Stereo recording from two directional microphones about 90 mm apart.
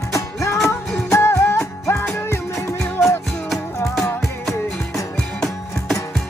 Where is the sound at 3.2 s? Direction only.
Centre (ahead or behind).